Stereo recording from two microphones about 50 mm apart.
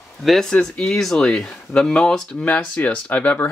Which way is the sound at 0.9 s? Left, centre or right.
Centre.